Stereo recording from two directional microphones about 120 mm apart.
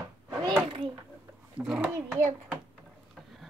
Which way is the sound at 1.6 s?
10° right (ahead or behind).